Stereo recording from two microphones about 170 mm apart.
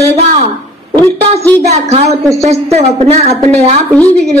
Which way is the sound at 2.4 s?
40° right (ahead or behind).